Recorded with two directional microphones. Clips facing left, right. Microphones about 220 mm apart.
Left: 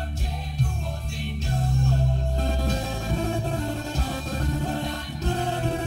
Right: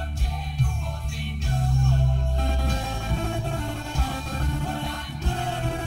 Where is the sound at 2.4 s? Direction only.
40° left (ahead or behind).